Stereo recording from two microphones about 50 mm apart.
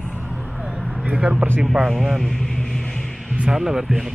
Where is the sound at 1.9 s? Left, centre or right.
Centre.